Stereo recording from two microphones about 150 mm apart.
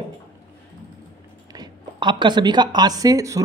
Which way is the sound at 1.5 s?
30° right (ahead or behind).